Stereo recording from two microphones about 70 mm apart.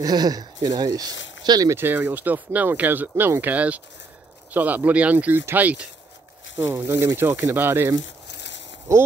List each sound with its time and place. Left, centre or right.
0.0 s speech: right
1.8 s speech: right
6.6 s speech: right
8.9 s speech: right